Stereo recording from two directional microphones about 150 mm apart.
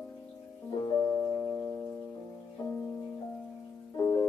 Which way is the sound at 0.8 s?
25° left (ahead or behind).